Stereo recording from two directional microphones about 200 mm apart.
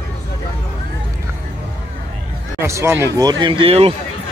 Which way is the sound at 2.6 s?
15° right (ahead or behind).